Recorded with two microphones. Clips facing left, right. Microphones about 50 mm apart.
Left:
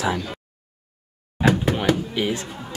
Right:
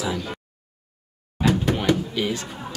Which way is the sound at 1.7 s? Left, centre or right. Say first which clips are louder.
Left 1 dB; centre.